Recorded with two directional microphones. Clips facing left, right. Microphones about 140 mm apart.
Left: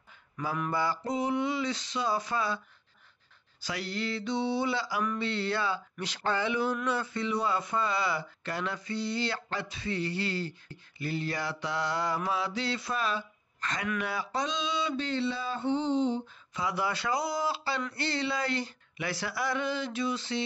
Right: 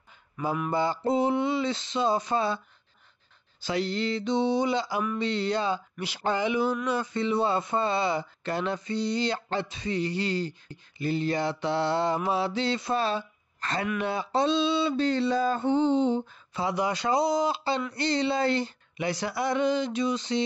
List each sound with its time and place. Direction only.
0.7 s speech: 25° right (ahead or behind)
3.6 s speech: 25° right (ahead or behind)
7.2 s speech: 25° right (ahead or behind)
13.9 s a sound: 25° right (ahead or behind); by 16.3 s 55° right (ahead or behind)
16.5 s speech: 25° right (ahead or behind)